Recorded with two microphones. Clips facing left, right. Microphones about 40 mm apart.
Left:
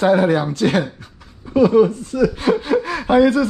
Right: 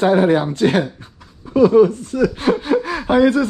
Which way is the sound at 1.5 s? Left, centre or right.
Left.